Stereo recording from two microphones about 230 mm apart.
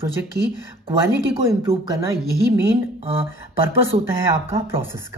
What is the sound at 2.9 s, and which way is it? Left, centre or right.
Speech, right.